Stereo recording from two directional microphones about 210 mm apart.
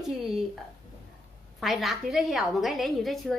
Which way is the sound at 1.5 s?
Centre (ahead or behind).